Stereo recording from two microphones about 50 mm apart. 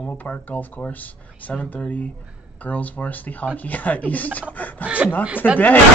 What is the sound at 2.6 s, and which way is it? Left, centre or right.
A man's voice, left.